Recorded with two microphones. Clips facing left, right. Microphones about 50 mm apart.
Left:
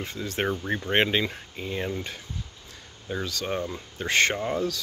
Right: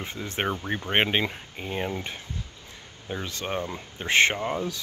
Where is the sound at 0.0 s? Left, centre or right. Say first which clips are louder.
Left 1 dB; right.